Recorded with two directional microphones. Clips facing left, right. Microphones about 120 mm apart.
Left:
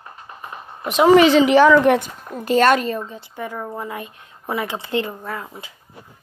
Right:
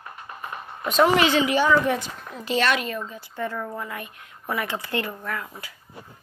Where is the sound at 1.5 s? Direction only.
80° left.